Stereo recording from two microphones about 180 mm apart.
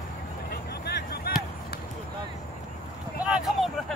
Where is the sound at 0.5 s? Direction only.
60° left (ahead or behind).